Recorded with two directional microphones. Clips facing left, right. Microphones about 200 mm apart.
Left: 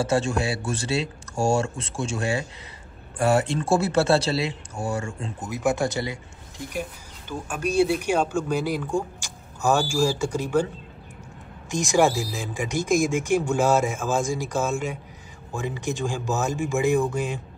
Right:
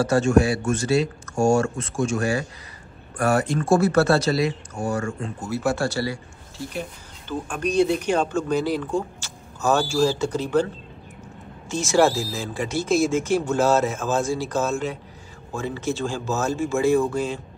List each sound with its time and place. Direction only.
0.0 s speech: 25° left (ahead or behind)
5.5 s speech: 15° left (ahead or behind)
11.7 s speech: 15° left (ahead or behind)